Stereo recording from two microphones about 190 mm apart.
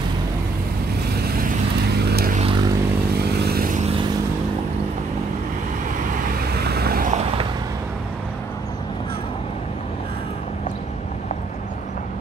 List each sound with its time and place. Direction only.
1.2 s vehicle: 50° right (ahead or behind)
2.3 s a sound: 25° right (ahead or behind)
3.1 s vehicle: 55° right (ahead or behind)
6.1 s vehicle: 50° right (ahead or behind)